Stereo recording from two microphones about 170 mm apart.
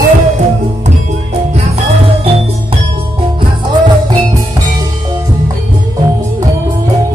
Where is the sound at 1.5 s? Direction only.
40° right (ahead or behind).